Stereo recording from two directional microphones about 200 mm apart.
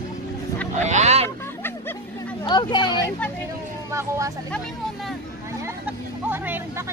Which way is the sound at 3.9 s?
15° right (ahead or behind).